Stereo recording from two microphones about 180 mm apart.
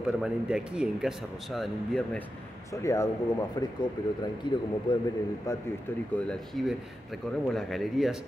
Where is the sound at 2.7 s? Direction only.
15° left (ahead or behind).